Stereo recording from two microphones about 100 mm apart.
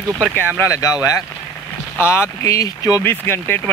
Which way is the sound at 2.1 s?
30° left (ahead or behind).